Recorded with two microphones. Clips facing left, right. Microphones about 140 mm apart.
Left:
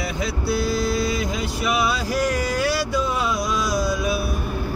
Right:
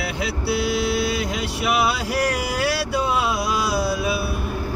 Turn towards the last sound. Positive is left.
turn(degrees=-70)  # may be behind; listen again after turning